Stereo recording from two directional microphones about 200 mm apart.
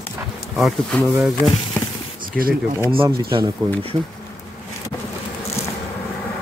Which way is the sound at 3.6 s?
20° right (ahead or behind).